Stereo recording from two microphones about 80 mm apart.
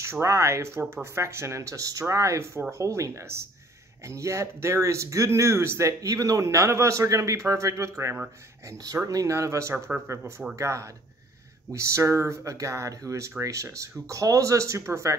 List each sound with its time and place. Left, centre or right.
0.0 s speech: right